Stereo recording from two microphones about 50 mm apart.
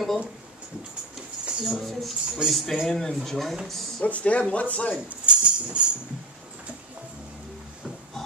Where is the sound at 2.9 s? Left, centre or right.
Centre.